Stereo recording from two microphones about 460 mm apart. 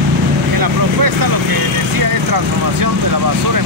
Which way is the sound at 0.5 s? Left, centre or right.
Right.